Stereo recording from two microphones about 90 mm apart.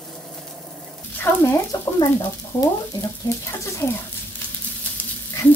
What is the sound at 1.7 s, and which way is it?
Speech, 45° left (ahead or behind).